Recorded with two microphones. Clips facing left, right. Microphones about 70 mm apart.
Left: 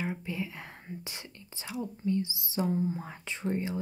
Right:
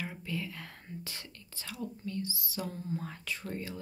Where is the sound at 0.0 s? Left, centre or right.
Left.